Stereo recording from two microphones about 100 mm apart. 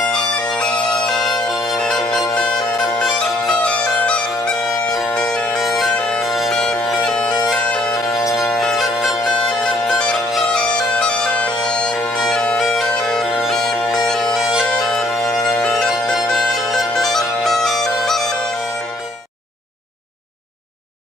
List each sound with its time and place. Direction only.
0.1 s bagpipes: 5° left (ahead or behind)
3.0 s music: 10° left (ahead or behind)
4.9 s bagpipes: 5° left (ahead or behind)
8.2 s music: 35° left (ahead or behind)
8.5 s music: 5° left (ahead or behind)
9.6 s bagpipes: 5° left (ahead or behind)
15.7 s music: centre (ahead or behind)